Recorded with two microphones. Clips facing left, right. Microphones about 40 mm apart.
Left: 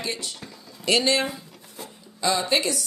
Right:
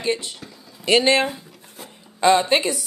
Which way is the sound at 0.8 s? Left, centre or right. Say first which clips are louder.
Right 5 dB; right.